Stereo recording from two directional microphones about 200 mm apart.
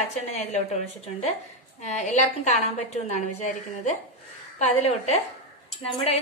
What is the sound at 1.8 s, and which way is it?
A woman's voice, 35° left (ahead or behind).